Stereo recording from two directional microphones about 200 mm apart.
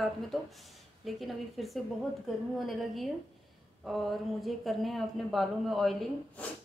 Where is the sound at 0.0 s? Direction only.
Centre (ahead or behind).